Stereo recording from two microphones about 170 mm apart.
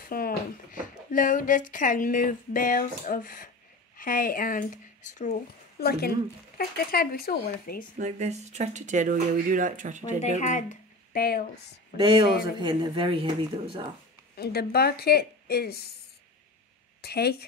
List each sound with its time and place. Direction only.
0.0 s speech: 60° left (ahead or behind)
5.8 s speech: 65° left (ahead or behind)
8.0 s speech: 40° right (ahead or behind)
10.4 s a sound: 45° left (ahead or behind)
11.2 s speech: 70° left (ahead or behind)
12.0 s speech: 30° right (ahead or behind)
14.3 s speech: 70° left (ahead or behind)
17.0 s speech: 70° left (ahead or behind)